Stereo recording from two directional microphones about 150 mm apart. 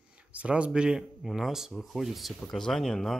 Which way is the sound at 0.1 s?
10° right (ahead or behind).